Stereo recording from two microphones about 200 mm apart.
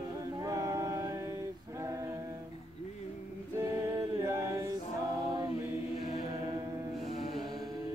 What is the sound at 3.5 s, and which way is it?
A capella, 15° right (ahead or behind).